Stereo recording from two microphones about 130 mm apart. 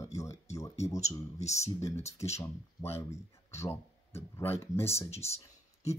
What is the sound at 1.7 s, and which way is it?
Speech, 20° left (ahead or behind).